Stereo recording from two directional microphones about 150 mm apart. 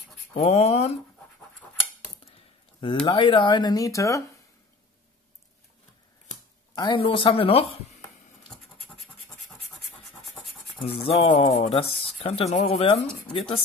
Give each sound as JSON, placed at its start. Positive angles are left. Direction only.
{"t": 0.3, "sound": "speech", "side_deg": 45}
{"t": 3.1, "sound": "speech", "side_deg": 35}
{"t": 6.7, "sound": "speech", "side_deg": 30}
{"t": 8.5, "sound": "scratch", "side_deg": 5}
{"t": 10.0, "sound": "rub", "side_deg": 0}
{"t": 10.8, "sound": "speech", "side_deg": 40}